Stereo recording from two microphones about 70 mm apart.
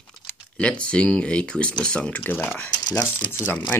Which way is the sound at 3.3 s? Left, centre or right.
Left.